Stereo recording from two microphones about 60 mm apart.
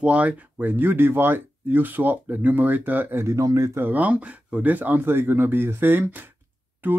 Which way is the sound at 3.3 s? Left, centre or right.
Right.